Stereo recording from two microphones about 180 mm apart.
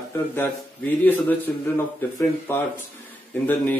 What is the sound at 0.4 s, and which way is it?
A man's voice, 10° left (ahead or behind).